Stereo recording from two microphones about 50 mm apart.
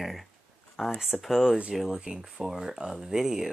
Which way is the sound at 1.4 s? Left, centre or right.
Right.